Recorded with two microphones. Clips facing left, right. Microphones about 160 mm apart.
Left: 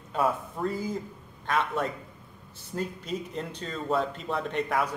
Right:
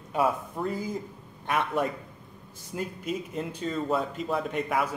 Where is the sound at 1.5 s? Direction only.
15° right (ahead or behind).